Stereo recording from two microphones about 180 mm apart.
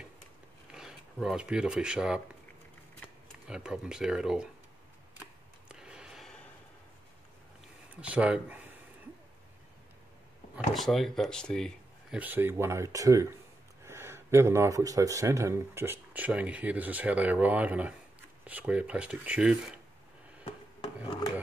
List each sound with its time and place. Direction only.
0.7 s speech: 5° right (ahead or behind)
3.4 s speech: 5° right (ahead or behind)
5.7 s a sound: 5° right (ahead or behind)
7.9 s speech: 10° right (ahead or behind)
10.5 s speech: centre (ahead or behind)
12.2 s speech: 10° right (ahead or behind)
20.4 s rub: 25° left (ahead or behind)